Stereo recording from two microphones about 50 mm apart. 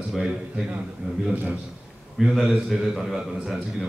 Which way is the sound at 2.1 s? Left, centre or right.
Centre.